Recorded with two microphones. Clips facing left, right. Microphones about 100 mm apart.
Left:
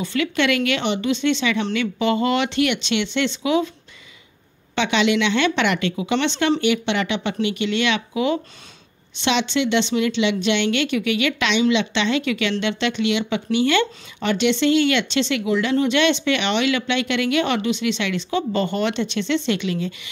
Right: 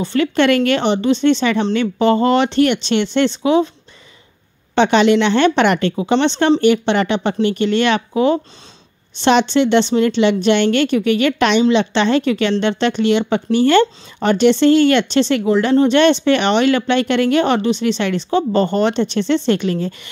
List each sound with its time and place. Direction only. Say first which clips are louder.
0.0 s a woman's voice: right 6 dB; 35° right (ahead or behind)
4.7 s a woman's voice: right 7 dB; 40° right (ahead or behind)